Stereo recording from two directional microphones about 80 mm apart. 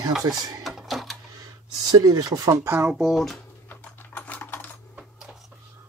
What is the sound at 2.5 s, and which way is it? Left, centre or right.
Speech, right.